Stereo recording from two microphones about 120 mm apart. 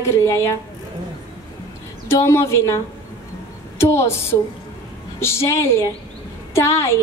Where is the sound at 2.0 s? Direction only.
25° left (ahead or behind).